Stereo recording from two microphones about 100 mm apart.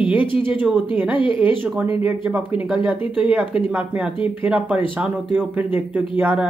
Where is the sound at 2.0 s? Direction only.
10° right (ahead or behind).